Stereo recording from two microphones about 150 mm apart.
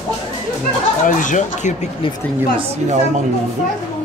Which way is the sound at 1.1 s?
60° left (ahead or behind).